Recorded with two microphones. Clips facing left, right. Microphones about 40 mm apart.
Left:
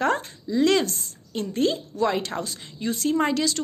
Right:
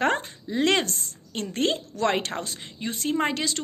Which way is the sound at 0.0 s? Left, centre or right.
Right.